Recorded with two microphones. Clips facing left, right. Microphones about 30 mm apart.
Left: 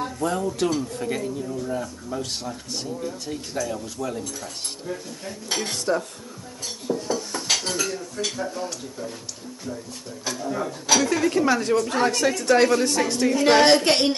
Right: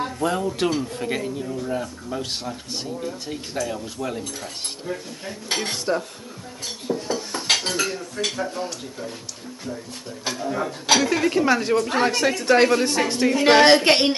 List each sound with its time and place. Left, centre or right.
0.0 s speech: right
6.6 s cutlery: right
7.4 s speech: right
10.2 s speech: right